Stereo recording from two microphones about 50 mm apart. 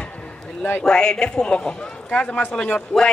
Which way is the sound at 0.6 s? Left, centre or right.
Left.